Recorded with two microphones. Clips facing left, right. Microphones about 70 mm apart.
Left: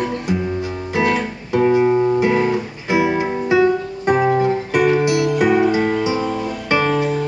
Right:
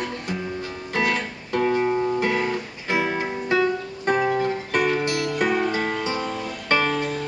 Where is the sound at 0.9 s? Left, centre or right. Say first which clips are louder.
Left 5 dB; centre.